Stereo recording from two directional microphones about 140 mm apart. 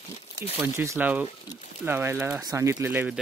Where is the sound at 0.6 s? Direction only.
15° right (ahead or behind).